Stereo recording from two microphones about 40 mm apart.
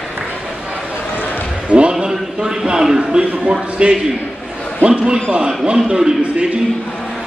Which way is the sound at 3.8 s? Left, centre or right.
Right.